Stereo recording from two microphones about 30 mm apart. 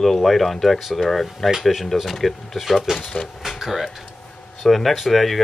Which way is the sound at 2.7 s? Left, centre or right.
Centre.